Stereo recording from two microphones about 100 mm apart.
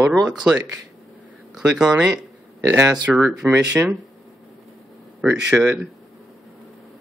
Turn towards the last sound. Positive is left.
turn(degrees=-10)  # may be behind; listen again after turning